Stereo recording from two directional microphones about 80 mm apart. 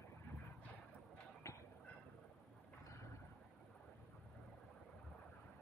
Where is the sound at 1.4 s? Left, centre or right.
Left.